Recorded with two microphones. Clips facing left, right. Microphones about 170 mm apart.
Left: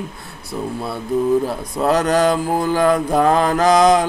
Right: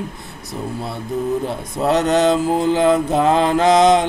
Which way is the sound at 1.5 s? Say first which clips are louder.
Even; 25° right (ahead or behind).